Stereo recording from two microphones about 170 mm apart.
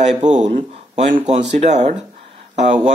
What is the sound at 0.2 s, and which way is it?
Speech, 45° right (ahead or behind).